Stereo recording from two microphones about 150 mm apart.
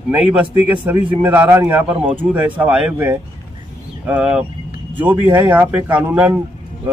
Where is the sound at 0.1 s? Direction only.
10° right (ahead or behind).